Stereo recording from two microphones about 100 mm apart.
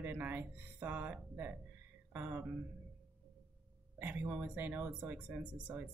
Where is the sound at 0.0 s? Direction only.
20° right (ahead or behind).